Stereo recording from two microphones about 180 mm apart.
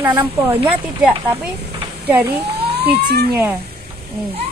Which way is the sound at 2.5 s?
65° right (ahead or behind).